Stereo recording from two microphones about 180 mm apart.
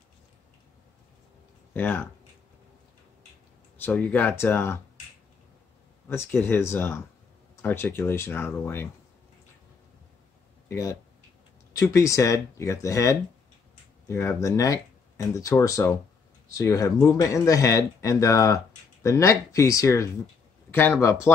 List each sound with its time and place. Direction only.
1.7 s speech: 10° left (ahead or behind)
3.7 s speech: 10° left (ahead or behind)
6.0 s speech: 15° left (ahead or behind)
10.7 s speech: 15° left (ahead or behind)